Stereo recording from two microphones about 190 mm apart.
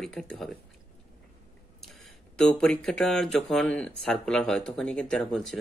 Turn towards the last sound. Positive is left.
turn(degrees=0)  # may be behind; listen again after turning